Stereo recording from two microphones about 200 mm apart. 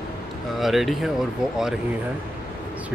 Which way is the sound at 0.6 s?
Centre (ahead or behind).